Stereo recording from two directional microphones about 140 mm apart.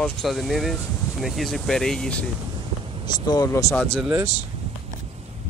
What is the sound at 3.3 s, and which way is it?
Speech, 25° left (ahead or behind).